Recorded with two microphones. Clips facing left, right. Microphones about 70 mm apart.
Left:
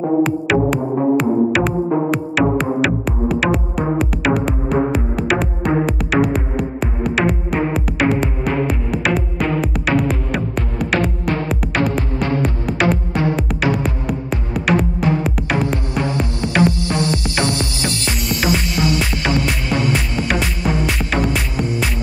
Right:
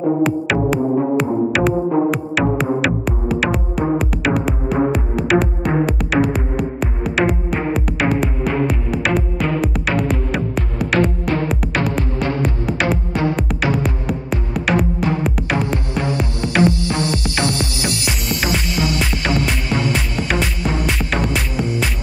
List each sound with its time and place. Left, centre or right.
0.2 s music: centre
16.0 s music: left
17.8 s music: centre
18.8 s music: left
19.2 s music: centre